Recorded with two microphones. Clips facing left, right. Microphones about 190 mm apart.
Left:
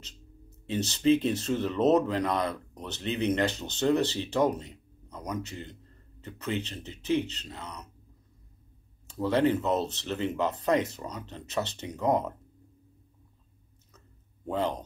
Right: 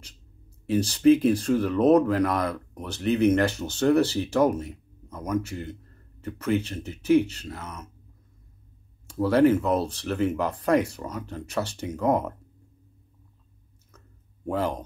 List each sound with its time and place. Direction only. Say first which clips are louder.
0.7 s speech: right 5 dB; 25° left (ahead or behind)
9.0 s speech: right 5 dB; 20° left (ahead or behind)
14.6 s speech: right 1 dB; 20° left (ahead or behind)